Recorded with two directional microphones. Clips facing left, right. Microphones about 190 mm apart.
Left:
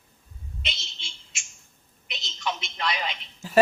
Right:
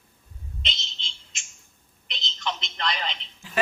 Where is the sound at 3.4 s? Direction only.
40° left (ahead or behind).